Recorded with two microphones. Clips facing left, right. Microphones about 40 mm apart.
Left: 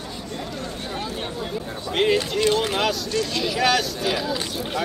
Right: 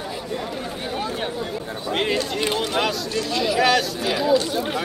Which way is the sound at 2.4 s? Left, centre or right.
Centre.